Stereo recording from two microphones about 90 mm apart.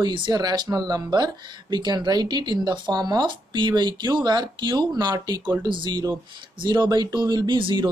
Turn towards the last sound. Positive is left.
turn(degrees=-60)  # may be behind; listen again after turning